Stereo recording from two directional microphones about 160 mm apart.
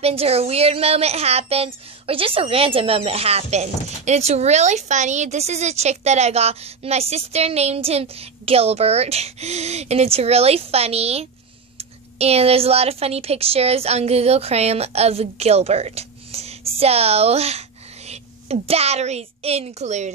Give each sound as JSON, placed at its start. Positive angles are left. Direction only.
{"t": 0.0, "sound": "a woman's voice", "side_deg": -40}